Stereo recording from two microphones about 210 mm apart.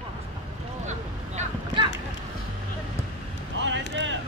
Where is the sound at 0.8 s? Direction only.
35° right (ahead or behind).